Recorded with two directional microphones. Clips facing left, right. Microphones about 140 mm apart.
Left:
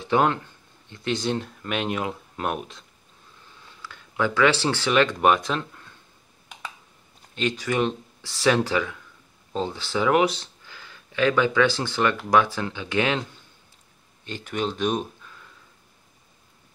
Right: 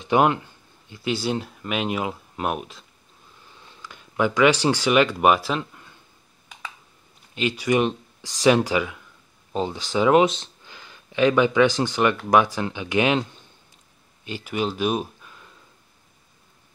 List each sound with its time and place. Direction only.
0.0 s speech: 15° right (ahead or behind)
3.8 s speech: 15° right (ahead or behind)
7.3 s speech: 10° right (ahead or behind)
14.2 s speech: 10° right (ahead or behind)